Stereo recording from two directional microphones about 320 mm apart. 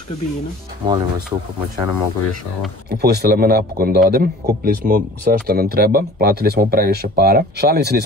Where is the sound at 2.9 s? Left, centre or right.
Right.